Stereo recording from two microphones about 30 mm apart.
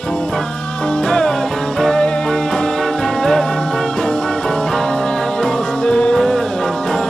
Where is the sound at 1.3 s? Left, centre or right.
Centre.